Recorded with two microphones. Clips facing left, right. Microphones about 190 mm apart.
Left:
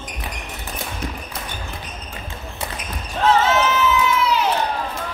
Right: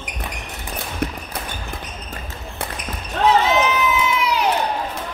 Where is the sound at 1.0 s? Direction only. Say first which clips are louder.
Right 7 dB; 60° right (ahead or behind).